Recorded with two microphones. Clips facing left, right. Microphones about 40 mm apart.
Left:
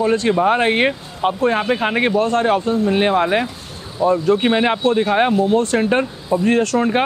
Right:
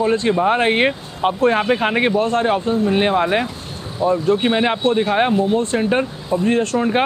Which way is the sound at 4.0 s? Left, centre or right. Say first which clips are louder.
Left 2 dB; right.